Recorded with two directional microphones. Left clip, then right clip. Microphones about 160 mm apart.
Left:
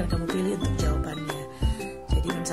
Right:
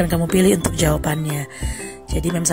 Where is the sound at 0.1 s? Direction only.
55° right (ahead or behind).